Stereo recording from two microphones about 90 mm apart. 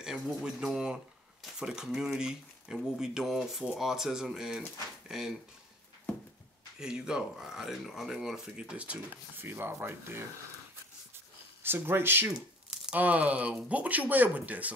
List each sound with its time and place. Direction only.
0.0 s speech: 5° right (ahead or behind)
6.8 s speech: 10° right (ahead or behind)
9.4 s speech: 25° right (ahead or behind)
11.6 s speech: 25° right (ahead or behind)
12.4 s a sound: 5° right (ahead or behind)
13.0 s speech: 15° right (ahead or behind)